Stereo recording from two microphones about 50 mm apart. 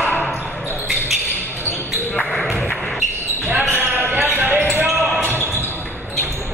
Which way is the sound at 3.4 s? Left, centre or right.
Right.